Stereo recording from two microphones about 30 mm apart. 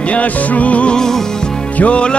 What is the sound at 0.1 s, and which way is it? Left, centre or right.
Music, left.